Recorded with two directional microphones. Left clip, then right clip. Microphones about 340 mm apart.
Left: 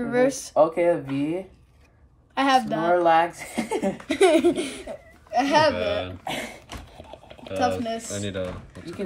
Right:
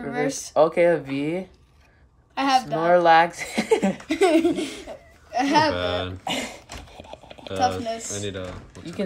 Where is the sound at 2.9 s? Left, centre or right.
Right.